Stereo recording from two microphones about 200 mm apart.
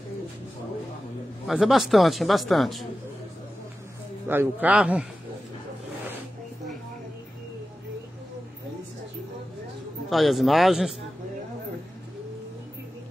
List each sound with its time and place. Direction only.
1.5 s a man's voice: centre (ahead or behind)
4.3 s a man's voice: 10° right (ahead or behind)
10.0 s a man's voice: centre (ahead or behind)